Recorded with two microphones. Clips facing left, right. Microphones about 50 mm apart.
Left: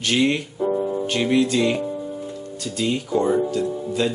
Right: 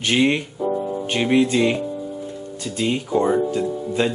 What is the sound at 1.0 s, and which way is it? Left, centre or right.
Speech, right.